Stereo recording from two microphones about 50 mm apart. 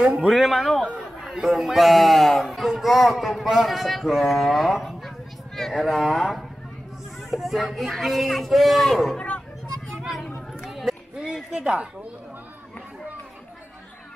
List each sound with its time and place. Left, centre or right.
0.3 s speech: centre
10.6 s run: centre
11.5 s speech: right